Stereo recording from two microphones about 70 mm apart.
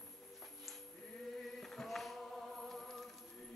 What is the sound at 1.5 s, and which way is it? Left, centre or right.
Choir, centre.